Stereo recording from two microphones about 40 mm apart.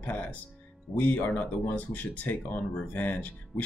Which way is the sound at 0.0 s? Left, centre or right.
Left.